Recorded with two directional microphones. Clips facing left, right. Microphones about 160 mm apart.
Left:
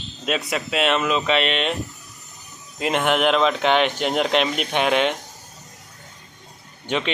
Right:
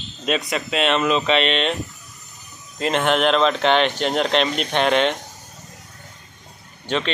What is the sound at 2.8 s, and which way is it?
Speech, 10° left (ahead or behind).